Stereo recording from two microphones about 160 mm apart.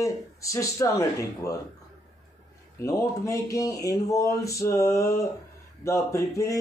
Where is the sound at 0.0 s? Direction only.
20° left (ahead or behind).